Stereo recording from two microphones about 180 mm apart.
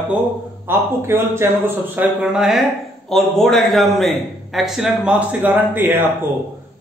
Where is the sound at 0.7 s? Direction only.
10° right (ahead or behind).